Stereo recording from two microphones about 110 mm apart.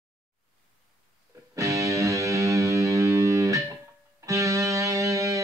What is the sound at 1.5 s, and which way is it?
Music, 30° right (ahead or behind).